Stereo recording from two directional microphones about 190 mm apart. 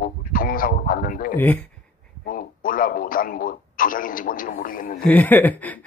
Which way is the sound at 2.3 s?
45° left (ahead or behind).